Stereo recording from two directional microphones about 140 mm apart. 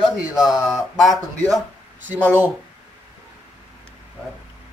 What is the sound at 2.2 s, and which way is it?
Speech, 15° right (ahead or behind).